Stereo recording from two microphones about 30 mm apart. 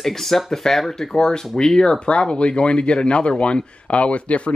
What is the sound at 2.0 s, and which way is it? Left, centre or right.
Speech, left.